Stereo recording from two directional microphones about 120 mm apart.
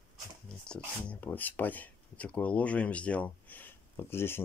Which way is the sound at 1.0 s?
15° left (ahead or behind).